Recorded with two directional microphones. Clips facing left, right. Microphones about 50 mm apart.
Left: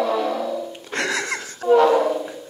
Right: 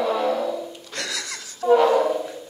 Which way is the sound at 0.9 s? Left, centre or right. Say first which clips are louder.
Left 9 dB; left.